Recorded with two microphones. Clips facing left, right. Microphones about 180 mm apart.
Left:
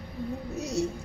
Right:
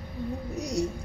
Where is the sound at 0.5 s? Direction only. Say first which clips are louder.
Even; 15° right (ahead or behind).